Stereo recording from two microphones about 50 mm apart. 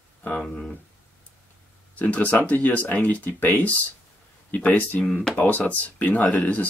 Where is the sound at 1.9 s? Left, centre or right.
Left.